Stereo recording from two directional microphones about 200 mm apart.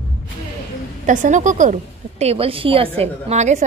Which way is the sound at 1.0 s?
40° right (ahead or behind).